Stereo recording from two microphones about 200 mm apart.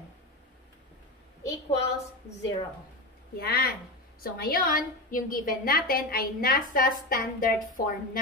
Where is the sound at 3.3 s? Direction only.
50° left (ahead or behind).